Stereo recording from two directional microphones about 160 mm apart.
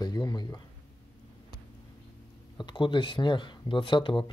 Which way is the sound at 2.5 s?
30° left (ahead or behind).